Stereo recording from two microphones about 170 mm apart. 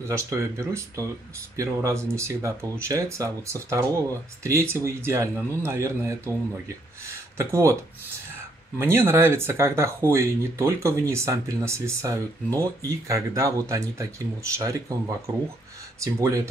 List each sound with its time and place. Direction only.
0.1 s speech: 15° right (ahead or behind)
8.7 s speech: 15° right (ahead or behind)